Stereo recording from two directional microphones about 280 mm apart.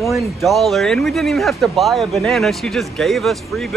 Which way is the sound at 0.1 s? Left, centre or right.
Centre.